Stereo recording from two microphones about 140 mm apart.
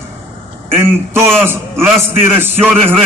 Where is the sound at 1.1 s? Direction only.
15° right (ahead or behind).